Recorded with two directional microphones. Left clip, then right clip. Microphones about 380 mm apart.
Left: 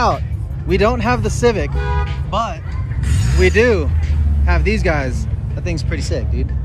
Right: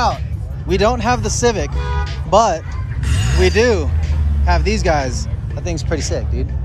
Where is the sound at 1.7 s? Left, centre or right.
Left.